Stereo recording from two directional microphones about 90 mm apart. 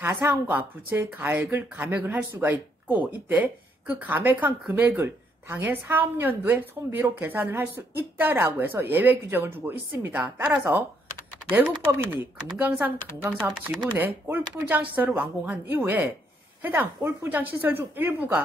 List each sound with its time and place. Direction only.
0.0 s a woman's voice: 25° right (ahead or behind)
11.9 s a woman's voice: 20° right (ahead or behind)